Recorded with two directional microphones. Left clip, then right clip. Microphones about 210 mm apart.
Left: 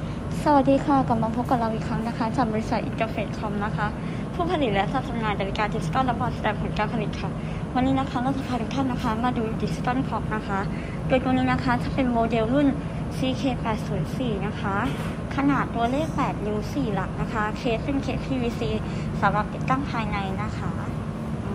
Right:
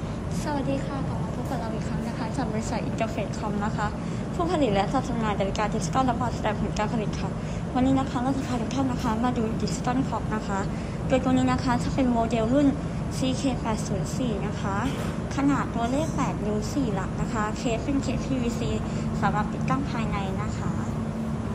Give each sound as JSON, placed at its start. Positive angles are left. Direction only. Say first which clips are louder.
{"t": 0.5, "sound": "a woman's voice", "louder": "left 11 dB", "side_deg": 10}
{"t": 2.3, "sound": "a woman's voice", "louder": "left 5 dB", "side_deg": 0}
{"t": 4.4, "sound": "a woman's voice", "louder": "even", "side_deg": -10}